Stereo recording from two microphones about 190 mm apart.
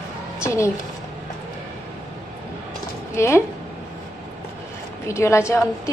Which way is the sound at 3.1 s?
15° left (ahead or behind).